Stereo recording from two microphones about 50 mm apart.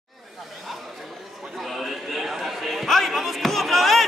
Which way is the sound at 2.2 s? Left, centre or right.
Centre.